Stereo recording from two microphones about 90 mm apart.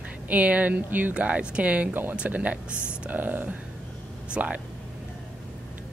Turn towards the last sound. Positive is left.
turn(degrees=-15)  # may be behind; listen again after turning